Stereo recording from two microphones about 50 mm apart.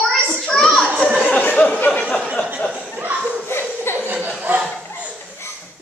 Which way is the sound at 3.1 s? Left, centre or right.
Right.